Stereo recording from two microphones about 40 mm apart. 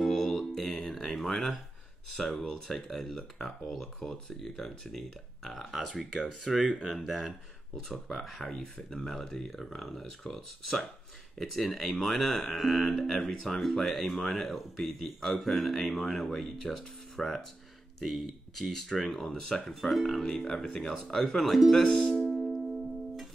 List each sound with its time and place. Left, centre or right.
0.0 s a sound: centre
2.1 s speech: centre
19.7 s speech: centre
20.2 s speech: centre
20.8 s speech: centre
21.1 s speech: centre
22.4 s music: centre